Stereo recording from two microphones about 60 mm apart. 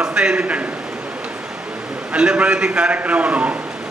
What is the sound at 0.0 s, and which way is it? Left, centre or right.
Speech, centre.